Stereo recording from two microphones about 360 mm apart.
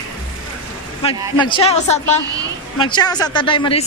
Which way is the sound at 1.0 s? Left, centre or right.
Centre.